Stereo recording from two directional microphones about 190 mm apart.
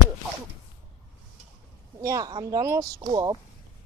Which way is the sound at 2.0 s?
15° right (ahead or behind).